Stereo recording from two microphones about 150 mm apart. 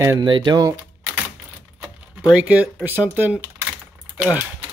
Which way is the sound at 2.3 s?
10° right (ahead or behind).